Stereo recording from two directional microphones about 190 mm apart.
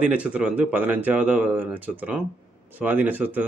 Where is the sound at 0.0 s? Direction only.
5° right (ahead or behind).